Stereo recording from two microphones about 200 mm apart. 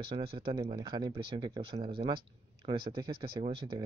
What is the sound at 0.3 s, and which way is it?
Speech, 25° right (ahead or behind).